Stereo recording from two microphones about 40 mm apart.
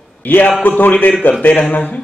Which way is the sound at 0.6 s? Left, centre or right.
Left.